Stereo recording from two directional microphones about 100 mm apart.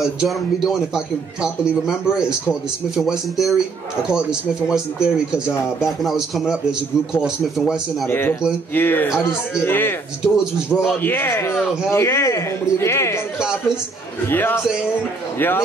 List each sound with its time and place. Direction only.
0.0 s a man's voice: centre (ahead or behind)
8.1 s a man's voice: 20° left (ahead or behind)
10.2 s a man's voice: 5° right (ahead or behind)
11.0 s a man's voice: 20° left (ahead or behind)
11.5 s a man's voice: 5° right (ahead or behind)
11.9 s a man's voice: 25° left (ahead or behind)
13.4 s a sound: 5° right (ahead or behind)
14.3 s a man's voice: 20° left (ahead or behind)